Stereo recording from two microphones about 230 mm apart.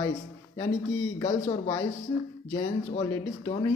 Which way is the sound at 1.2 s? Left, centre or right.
Centre.